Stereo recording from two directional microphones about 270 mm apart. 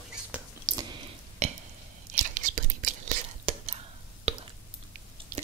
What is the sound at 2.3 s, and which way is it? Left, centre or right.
Whispering, right.